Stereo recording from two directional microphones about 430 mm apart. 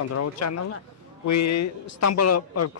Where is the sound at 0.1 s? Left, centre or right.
Left.